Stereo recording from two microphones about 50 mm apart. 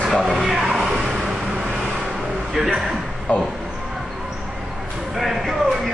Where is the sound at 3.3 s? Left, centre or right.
Left.